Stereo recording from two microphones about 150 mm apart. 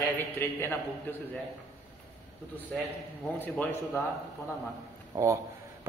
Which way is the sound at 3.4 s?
10° left (ahead or behind).